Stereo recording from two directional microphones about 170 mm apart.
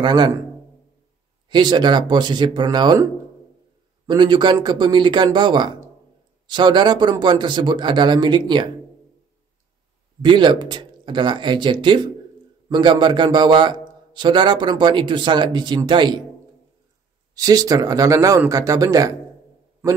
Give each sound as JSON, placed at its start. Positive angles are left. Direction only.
{"t": 0.0, "sound": "a man's voice", "side_deg": -25}
{"t": 1.5, "sound": "a man's voice", "side_deg": -25}
{"t": 4.1, "sound": "a man's voice", "side_deg": -25}
{"t": 10.2, "sound": "a man's voice", "side_deg": -25}
{"t": 17.3, "sound": "a man's voice", "side_deg": -20}